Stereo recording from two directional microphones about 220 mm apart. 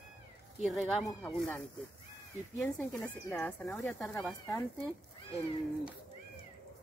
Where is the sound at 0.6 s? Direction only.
Centre (ahead or behind).